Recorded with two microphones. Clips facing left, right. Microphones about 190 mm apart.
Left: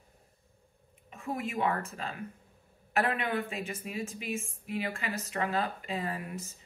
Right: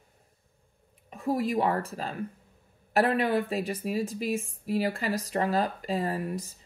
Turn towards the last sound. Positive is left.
turn(degrees=-40)  # may be behind; listen again after turning